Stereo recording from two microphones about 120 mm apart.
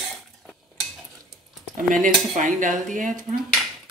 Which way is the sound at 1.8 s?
90° right.